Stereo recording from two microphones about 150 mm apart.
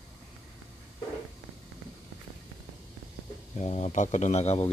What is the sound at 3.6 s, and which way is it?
Speech, 45° left (ahead or behind).